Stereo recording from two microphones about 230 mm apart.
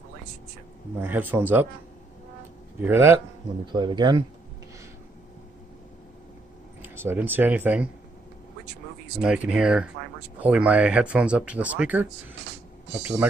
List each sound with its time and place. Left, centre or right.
1.0 s speech: centre
2.8 s speech: centre
6.8 s speech: centre
9.2 s speech: centre